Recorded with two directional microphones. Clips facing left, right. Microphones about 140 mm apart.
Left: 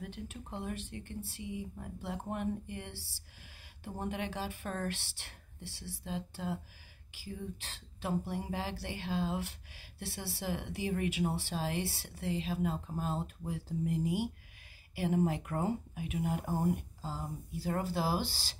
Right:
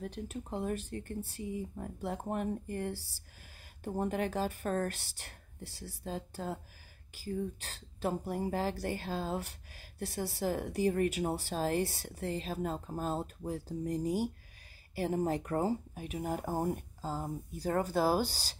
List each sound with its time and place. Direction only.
0.0 s speech: 40° right (ahead or behind)